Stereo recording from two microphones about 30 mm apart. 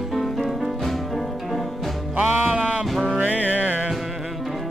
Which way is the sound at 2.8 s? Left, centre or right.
Centre.